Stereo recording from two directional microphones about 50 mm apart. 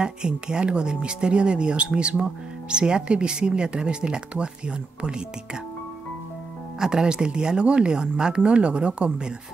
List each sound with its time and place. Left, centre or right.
0.0 s speech: centre
6.8 s speech: centre